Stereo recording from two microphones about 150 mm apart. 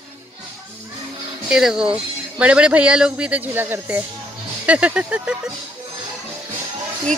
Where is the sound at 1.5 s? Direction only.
5° right (ahead or behind).